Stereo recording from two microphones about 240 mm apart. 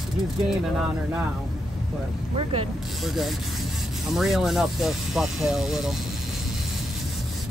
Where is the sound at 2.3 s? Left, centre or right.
Right.